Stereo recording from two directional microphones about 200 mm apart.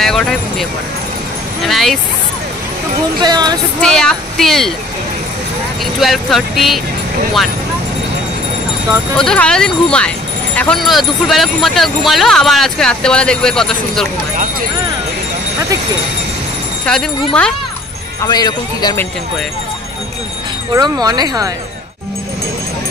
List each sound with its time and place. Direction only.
0.0 s speech: centre (ahead or behind)
3.2 s speech: 20° right (ahead or behind)
3.8 s speech: 5° left (ahead or behind)
5.9 s speech: centre (ahead or behind)
9.1 s speech: 5° left (ahead or behind)
17.3 s speech: 5° left (ahead or behind)
18.2 s speech: 20° left (ahead or behind)
20.7 s speech: 20° right (ahead or behind)